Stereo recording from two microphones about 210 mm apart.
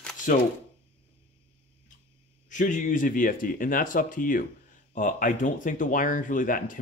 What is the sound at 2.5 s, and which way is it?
Speech, 35° left (ahead or behind).